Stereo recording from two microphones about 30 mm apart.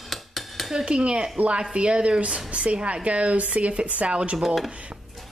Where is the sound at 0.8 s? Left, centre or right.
Right.